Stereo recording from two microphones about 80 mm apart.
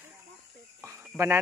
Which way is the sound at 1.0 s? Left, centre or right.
Right.